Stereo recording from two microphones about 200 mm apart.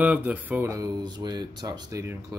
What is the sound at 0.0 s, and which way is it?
Speech, 5° right (ahead or behind).